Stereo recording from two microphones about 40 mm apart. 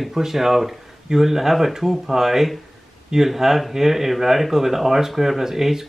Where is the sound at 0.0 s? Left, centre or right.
Centre.